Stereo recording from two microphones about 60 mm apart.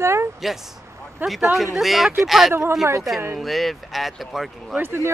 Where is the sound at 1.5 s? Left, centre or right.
Centre.